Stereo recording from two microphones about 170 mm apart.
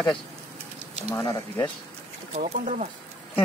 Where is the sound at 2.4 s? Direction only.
45° right (ahead or behind).